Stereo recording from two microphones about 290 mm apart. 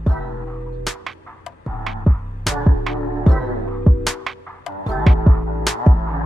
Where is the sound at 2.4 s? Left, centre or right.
Centre.